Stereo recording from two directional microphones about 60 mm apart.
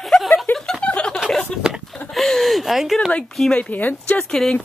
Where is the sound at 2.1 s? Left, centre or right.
Centre.